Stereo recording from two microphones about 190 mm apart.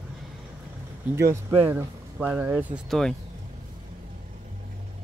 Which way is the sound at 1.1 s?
15° right (ahead or behind).